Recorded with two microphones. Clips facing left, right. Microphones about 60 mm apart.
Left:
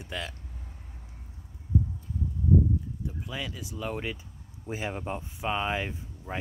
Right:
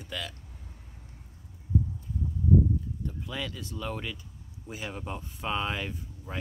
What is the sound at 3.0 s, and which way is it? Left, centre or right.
Speech, centre.